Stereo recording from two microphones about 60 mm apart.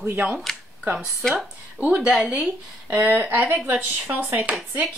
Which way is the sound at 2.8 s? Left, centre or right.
Right.